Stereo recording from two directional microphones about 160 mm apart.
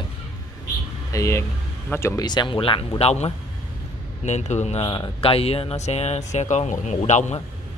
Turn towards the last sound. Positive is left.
turn(degrees=45)  # may be behind; listen again after turning